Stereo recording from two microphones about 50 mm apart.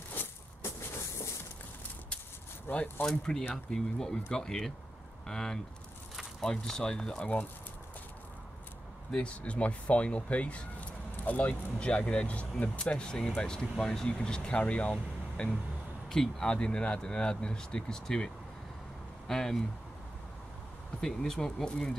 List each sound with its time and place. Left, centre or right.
0.6 s vehicle: left
2.7 s speech: left
3.3 s speech: centre
9.1 s speech: left
16.5 s speech: left
21.0 s speech: centre